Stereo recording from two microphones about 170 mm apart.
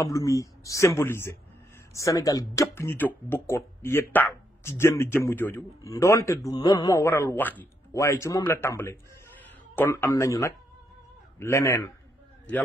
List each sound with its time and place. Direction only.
0.0 s speech: 20° left (ahead or behind)